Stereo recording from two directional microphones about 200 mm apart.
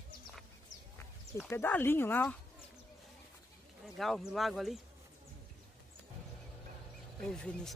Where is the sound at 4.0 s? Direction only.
Centre (ahead or behind).